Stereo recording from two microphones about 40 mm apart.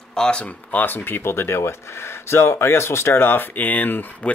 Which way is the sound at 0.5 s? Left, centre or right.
Left.